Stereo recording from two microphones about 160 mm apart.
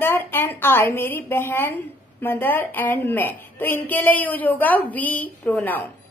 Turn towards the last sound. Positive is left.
turn(degrees=10)  # may be behind; listen again after turning